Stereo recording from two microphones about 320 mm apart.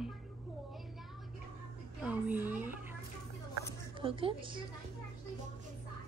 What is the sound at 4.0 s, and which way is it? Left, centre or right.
Speech, centre.